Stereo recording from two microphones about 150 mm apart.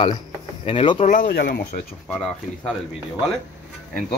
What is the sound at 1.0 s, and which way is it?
Speech, 65° left (ahead or behind).